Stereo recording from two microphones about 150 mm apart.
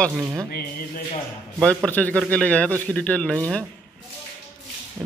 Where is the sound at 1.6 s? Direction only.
5° left (ahead or behind).